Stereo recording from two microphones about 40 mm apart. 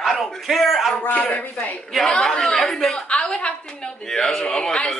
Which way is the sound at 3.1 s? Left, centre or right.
Left.